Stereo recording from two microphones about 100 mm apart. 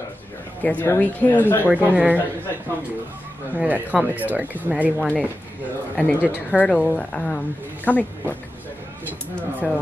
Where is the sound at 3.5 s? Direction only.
15° right (ahead or behind).